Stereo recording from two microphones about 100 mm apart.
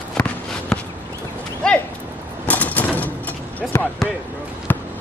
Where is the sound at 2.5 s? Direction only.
15° left (ahead or behind).